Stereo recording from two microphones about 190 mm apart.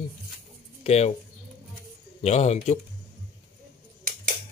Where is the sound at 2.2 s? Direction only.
35° left (ahead or behind).